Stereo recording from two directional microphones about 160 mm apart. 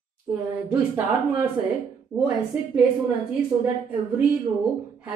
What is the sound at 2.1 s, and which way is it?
Speech, 5° right (ahead or behind).